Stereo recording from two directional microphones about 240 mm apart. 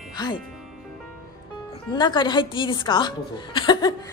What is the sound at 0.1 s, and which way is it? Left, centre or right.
Speech, centre.